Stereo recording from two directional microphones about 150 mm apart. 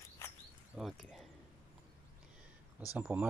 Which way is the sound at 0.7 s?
Centre (ahead or behind).